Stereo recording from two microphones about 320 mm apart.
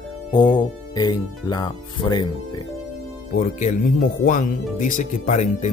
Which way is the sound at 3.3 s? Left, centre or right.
Left.